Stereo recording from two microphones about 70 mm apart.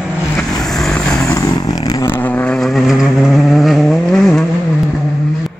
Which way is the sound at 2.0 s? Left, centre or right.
Left.